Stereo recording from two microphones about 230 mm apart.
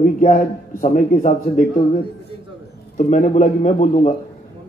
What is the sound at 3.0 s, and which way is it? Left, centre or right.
A man's voice, left.